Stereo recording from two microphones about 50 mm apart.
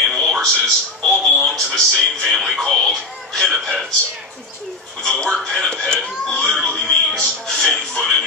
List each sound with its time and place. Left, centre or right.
0.1 s speech: centre
3.4 s a sound: centre
5.2 s speech: centre
6.6 s music: centre